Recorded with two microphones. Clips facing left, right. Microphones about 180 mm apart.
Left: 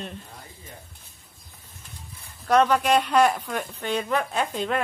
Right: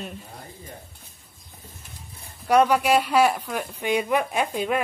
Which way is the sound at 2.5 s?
10° right (ahead or behind).